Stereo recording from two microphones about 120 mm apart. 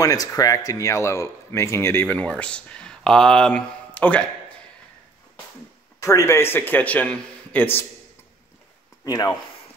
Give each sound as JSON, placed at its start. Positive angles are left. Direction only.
{"t": 0.0, "sound": "speech", "side_deg": 30}
{"t": 5.9, "sound": "a man's voice", "side_deg": 25}
{"t": 9.0, "sound": "speech", "side_deg": 30}